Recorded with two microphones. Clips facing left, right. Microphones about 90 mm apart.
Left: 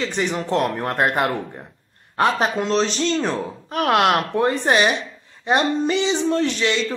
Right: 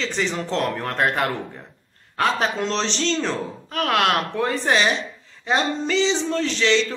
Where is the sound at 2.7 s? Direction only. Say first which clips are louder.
Left 4 dB; 5° left (ahead or behind).